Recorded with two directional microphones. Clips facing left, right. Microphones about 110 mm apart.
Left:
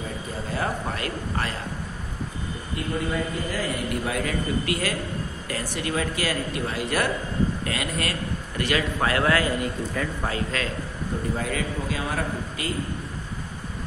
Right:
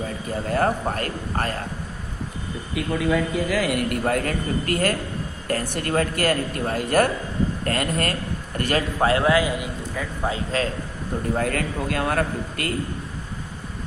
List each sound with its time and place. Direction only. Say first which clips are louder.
0.5 s speech: right 6 dB; 50° right (ahead or behind)
2.7 s a man's voice: right 5 dB; 90° right; by 8.8 s 45° right (ahead or behind)
9.0 s a man's voice: right 4 dB; 25° right (ahead or behind)
10.5 s a man's voice: right 5 dB; 35° right (ahead or behind)
11.3 s a man's voice: right 4 dB; 60° right (ahead or behind)